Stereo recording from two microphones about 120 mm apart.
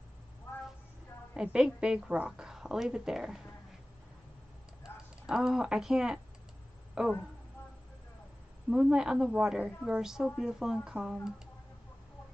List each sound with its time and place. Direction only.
0.5 s vehicle: 20° left (ahead or behind)
1.3 s a woman's voice: 10° right (ahead or behind)
5.2 s a woman's voice: 5° right (ahead or behind)
8.6 s speech: 5° right (ahead or behind)